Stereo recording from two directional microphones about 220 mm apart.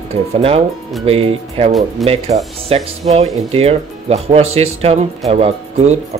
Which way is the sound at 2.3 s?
30° right (ahead or behind).